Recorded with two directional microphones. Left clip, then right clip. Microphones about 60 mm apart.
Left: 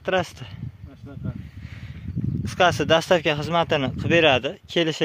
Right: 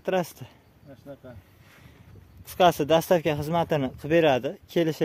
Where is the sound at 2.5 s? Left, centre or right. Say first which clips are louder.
Left 2 dB; right.